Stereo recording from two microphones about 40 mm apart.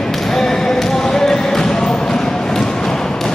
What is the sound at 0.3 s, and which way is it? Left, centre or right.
Basketball bounce, centre.